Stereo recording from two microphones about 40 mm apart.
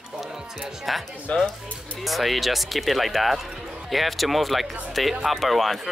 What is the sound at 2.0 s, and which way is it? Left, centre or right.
Speech, centre.